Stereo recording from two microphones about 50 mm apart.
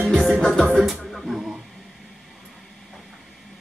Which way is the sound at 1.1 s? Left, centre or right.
Centre.